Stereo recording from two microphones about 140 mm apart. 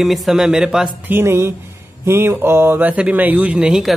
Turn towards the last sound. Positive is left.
turn(degrees=-5)  # may be behind; listen again after turning